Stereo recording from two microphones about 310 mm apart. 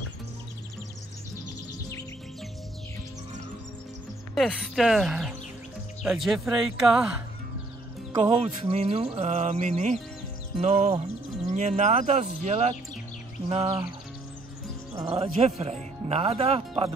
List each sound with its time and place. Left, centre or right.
4.4 s speech: centre
8.1 s speech: centre
15.0 s speech: centre